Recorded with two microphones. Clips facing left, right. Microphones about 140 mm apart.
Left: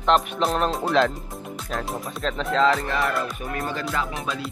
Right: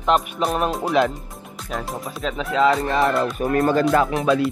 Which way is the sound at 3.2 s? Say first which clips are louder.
Right 9 dB; 45° right (ahead or behind).